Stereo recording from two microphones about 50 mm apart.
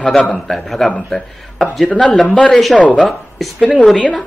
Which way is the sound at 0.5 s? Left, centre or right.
Centre.